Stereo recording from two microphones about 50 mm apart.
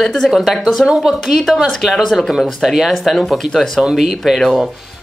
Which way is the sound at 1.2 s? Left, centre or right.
Centre.